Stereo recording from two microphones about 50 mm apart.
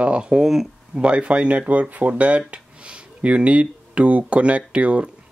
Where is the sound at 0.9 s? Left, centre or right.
Right.